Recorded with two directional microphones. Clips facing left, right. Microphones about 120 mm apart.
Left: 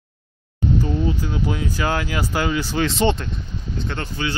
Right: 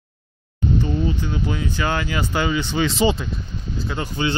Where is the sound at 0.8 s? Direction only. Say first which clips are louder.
Even; centre (ahead or behind).